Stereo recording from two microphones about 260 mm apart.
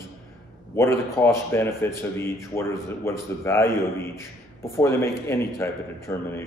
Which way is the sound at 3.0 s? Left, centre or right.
Centre.